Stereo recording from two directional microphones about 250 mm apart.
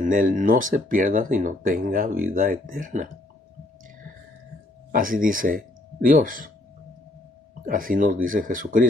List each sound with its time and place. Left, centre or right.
0.0 s speech: right
4.9 s speech: right
7.6 s speech: right